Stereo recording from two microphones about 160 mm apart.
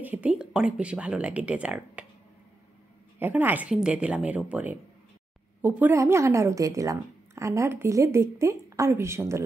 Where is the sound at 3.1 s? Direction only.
10° right (ahead or behind).